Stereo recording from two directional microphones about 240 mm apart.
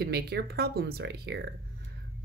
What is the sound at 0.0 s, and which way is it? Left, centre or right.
Speech, right.